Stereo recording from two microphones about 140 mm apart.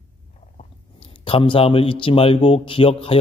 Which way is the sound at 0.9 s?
40° left (ahead or behind).